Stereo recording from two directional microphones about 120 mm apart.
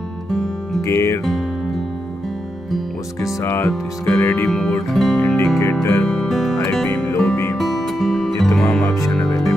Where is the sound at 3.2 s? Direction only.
25° left (ahead or behind).